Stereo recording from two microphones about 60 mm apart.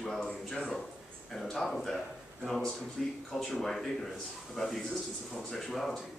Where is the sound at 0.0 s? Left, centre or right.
Centre.